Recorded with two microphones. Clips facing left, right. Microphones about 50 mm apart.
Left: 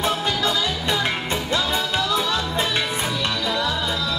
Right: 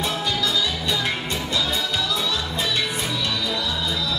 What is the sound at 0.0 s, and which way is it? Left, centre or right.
Music, left.